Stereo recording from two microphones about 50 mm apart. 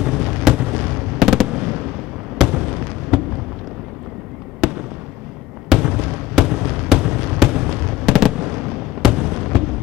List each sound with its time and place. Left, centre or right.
0.0 s fireworks: centre
1.1 s fireworks: centre
5.7 s fireworks: centre
9.1 s fireworks: centre